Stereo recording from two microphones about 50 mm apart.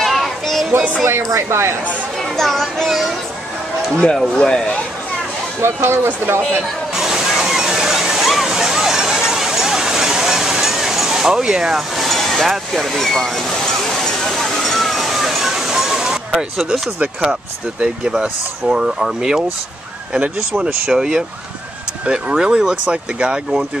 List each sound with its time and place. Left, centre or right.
0.0 s child singing: centre
1.0 s speech: right
2.3 s speech: centre
3.9 s speech: centre
5.6 s speech: right
7.0 s water: centre
17.7 s speech: centre
20.8 s speech: centre